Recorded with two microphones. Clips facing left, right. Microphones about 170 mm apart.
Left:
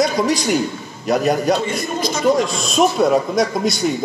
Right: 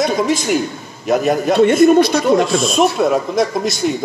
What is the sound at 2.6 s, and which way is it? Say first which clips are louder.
Speech: right 1 dB; centre (ahead or behind).